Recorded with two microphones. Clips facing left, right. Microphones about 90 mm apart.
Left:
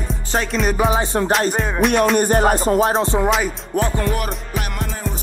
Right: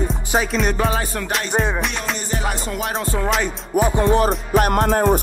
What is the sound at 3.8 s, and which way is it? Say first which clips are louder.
Music: right 3 dB; 15° right (ahead or behind).